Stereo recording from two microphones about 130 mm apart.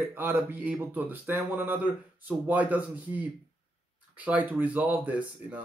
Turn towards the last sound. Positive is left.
turn(degrees=-10)  # may be behind; listen again after turning